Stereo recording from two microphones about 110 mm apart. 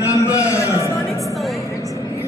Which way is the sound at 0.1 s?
30° left (ahead or behind).